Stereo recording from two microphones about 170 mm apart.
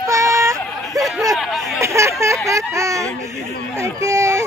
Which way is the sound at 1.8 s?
15° right (ahead or behind).